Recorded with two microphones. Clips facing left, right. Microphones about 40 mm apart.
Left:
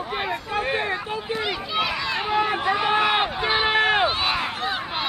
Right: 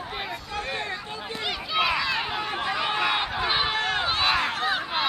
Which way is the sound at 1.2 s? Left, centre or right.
Centre.